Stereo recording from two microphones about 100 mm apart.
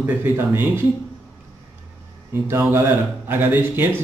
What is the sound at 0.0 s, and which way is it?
Speech, 25° right (ahead or behind).